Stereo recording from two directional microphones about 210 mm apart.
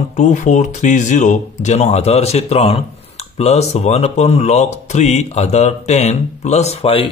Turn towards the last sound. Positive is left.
turn(degrees=25)  # may be behind; listen again after turning